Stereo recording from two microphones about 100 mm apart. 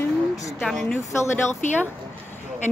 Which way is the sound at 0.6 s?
5° left (ahead or behind).